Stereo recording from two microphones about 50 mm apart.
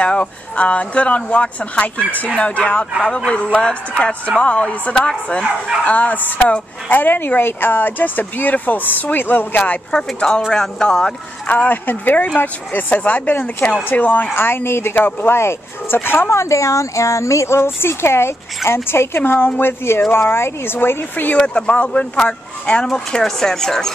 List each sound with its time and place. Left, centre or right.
0.0 s speech: left
5.9 s speech: left
9.8 s speech: centre
11.4 s speech: left
14.3 s speech: left
16.3 s speech: left
21.4 s speech: left